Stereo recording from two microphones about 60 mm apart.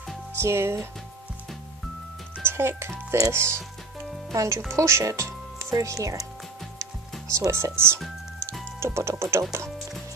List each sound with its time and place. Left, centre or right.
0.3 s speech: right
2.4 s music: right
3.3 s speech: right
6.8 s music: right
8.7 s speech: right